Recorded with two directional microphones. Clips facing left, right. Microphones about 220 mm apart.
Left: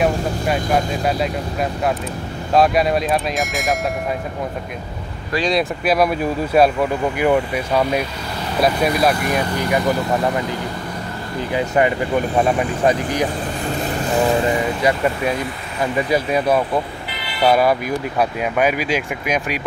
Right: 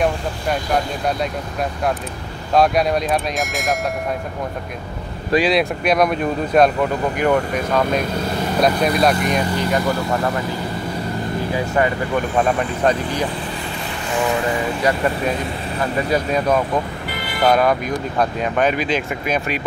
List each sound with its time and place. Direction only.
1.0 s speech: centre (ahead or behind)
5.4 s speech: centre (ahead or behind)
11.5 s speech: 20° left (ahead or behind)
14.1 s speech: 35° left (ahead or behind)
16.1 s speech: 10° left (ahead or behind)
17.1 s vehicle: 50° right (ahead or behind)
17.5 s speech: 5° left (ahead or behind)